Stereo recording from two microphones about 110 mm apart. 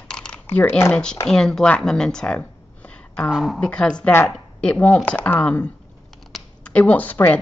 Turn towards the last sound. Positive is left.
turn(degrees=15)  # may be behind; listen again after turning